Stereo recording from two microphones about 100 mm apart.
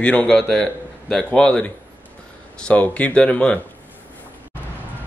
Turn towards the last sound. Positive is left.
turn(degrees=10)  # may be behind; listen again after turning